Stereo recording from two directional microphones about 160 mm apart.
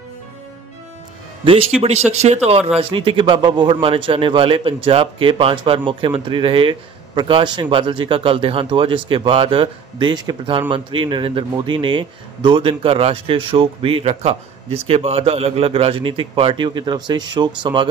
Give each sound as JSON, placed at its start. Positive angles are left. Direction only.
{"t": 1.4, "sound": "a man's voice", "side_deg": -35}